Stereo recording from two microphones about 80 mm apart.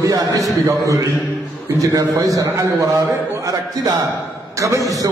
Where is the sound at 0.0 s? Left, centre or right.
Right.